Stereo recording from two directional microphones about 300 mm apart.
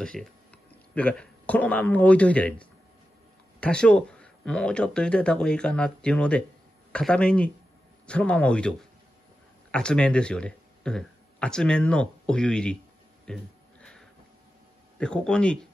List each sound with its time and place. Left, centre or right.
0.0 s speech: centre
13.2 s a sound: centre
15.0 s speech: centre